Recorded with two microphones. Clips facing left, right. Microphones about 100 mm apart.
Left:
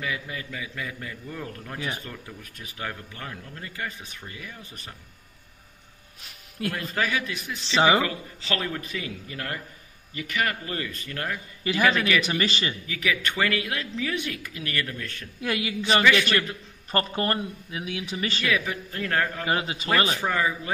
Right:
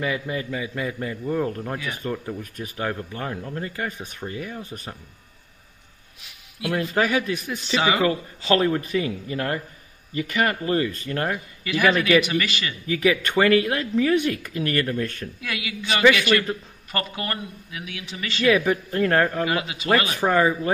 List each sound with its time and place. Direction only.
0.0 s speech: 30° right (ahead or behind)
1.2 s a man's voice: 45° right (ahead or behind)
4.0 s a man's voice: 50° right (ahead or behind)
4.3 s speech: 40° right (ahead or behind)
6.6 s speech: 45° left (ahead or behind)
7.0 s speech: 40° right (ahead or behind)
7.7 s speech: 30° left (ahead or behind)
8.0 s speech: 35° right (ahead or behind)
11.6 s a man's voice: 30° left (ahead or behind)
12.8 s speech: 35° right (ahead or behind)
15.4 s speech: 35° left (ahead or behind)
18.4 s a man's voice: 45° right (ahead or behind)
19.4 s speech: 30° left (ahead or behind)
20.2 s a man's voice: 45° right (ahead or behind)